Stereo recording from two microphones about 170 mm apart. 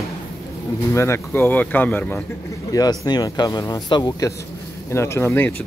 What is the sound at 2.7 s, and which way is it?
Speech, 25° left (ahead or behind).